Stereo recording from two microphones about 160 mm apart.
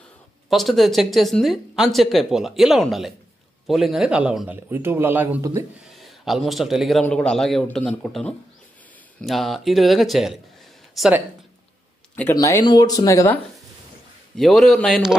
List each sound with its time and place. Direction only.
0.5 s a man's voice: centre (ahead or behind); by 5.7 s 20° right (ahead or behind)
5.9 s a man's voice: centre (ahead or behind)
12.4 s speech: 20° left (ahead or behind)
14.3 s a man's voice: centre (ahead or behind)